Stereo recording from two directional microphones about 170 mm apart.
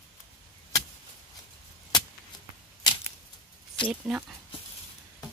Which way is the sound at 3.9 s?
5° right (ahead or behind).